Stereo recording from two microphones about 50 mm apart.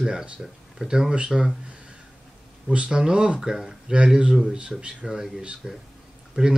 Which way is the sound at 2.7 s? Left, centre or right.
Centre.